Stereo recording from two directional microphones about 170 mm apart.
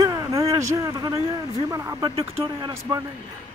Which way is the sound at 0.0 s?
20° right (ahead or behind).